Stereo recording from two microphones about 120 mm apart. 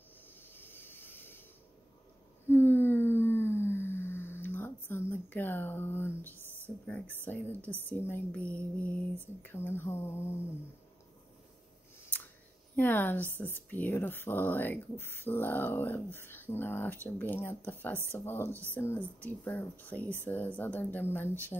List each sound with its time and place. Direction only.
0.5 s mechanisms: 15° left (ahead or behind)
2.5 s a sound: 20° left (ahead or behind)
7.8 s speech: 20° left (ahead or behind)
12.7 s speech: 15° left (ahead or behind)
18.5 s speech: 20° right (ahead or behind)
18.8 s speech: 15° left (ahead or behind)